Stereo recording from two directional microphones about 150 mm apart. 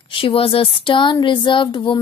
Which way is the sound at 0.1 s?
35° left (ahead or behind).